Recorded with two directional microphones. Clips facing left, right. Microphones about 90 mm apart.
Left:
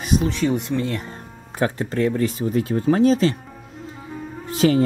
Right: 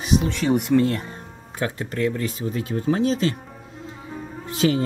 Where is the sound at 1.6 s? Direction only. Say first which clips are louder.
Left 3 dB; 30° left (ahead or behind).